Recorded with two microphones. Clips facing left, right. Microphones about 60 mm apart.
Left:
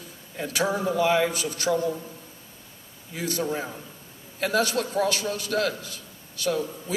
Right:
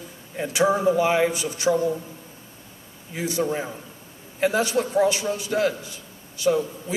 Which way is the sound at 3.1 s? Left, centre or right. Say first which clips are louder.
Right 3 dB; right.